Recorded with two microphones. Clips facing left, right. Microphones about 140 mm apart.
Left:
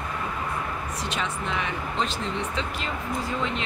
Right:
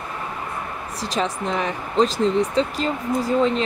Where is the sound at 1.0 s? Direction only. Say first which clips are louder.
Right 8 dB; 35° right (ahead or behind).